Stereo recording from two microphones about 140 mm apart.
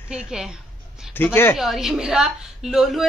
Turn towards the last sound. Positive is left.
turn(degrees=0)  # may be behind; listen again after turning